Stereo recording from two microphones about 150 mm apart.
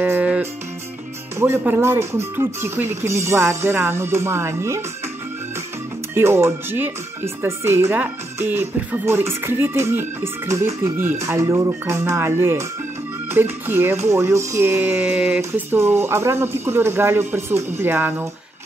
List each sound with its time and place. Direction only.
0.0 s music: 10° right (ahead or behind)
1.4 s speech: 15° right (ahead or behind)
6.1 s speech: 15° right (ahead or behind)